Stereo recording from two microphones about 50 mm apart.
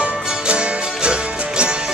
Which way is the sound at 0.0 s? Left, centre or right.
Right.